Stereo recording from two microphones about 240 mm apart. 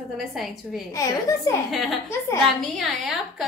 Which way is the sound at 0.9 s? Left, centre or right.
Centre.